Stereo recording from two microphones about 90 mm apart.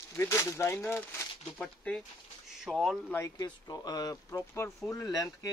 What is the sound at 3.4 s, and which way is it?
Speech, 45° left (ahead or behind).